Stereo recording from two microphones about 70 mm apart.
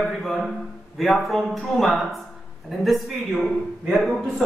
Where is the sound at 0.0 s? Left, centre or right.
Centre.